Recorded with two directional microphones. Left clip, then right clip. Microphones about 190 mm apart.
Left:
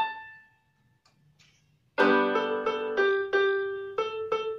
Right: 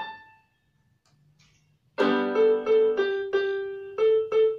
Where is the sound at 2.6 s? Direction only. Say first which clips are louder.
Right 5 dB; 25° left (ahead or behind).